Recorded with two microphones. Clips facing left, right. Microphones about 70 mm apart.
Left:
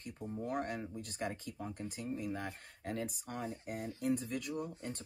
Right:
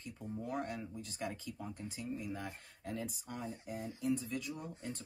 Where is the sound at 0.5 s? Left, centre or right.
Left.